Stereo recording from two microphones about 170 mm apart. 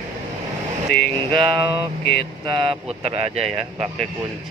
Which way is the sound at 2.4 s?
30° right (ahead or behind).